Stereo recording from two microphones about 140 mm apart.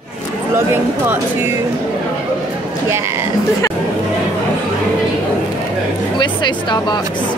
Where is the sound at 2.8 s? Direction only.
20° right (ahead or behind).